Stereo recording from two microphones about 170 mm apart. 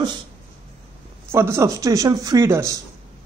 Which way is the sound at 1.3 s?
15° right (ahead or behind).